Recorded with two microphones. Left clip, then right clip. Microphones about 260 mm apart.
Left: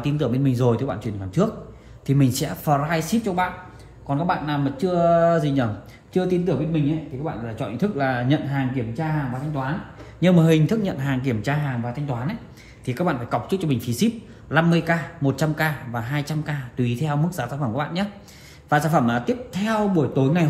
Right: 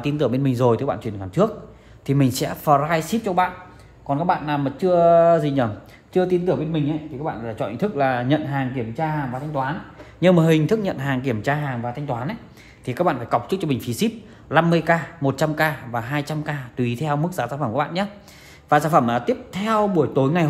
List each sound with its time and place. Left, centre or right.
0.0 s speech: right